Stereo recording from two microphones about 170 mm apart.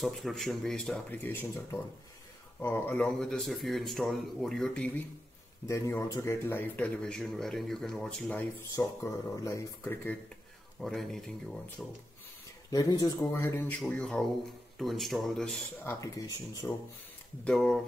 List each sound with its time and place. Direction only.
0.0 s speech: centre (ahead or behind)
8.7 s speech: 20° left (ahead or behind)
10.8 s speech: centre (ahead or behind)
12.7 s speech: 20° left (ahead or behind); by 15.9 s 5° left (ahead or behind)
15.9 s speech: 20° left (ahead or behind)
17.5 s speech: 5° left (ahead or behind)